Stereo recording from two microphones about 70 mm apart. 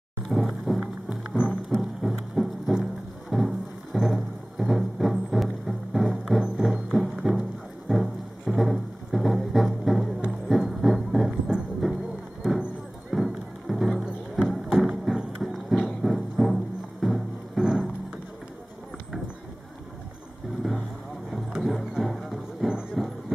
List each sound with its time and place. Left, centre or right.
0.3 s music: centre
13.1 s music: centre
21.3 s music: centre